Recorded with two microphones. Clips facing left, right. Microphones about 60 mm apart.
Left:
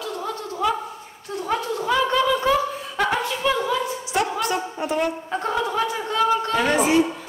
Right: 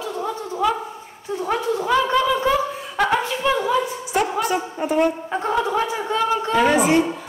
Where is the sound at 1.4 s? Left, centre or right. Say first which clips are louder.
Right 2 dB; centre.